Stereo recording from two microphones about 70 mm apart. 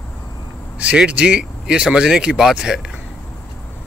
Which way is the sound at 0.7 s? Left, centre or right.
Centre.